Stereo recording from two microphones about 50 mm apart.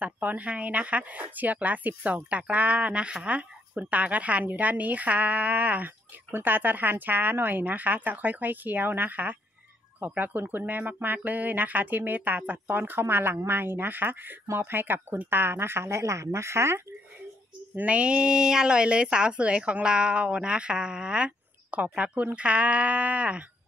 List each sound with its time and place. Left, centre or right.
0.0 s a woman's voice: right
17.8 s a woman's voice: right